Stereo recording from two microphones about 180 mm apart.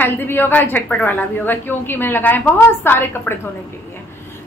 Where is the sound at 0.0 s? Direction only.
10° left (ahead or behind).